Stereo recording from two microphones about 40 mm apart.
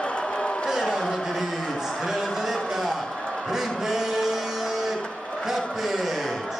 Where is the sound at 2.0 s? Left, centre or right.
Centre.